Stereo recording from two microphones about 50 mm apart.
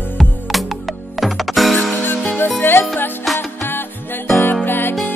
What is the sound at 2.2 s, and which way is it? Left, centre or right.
Music, left.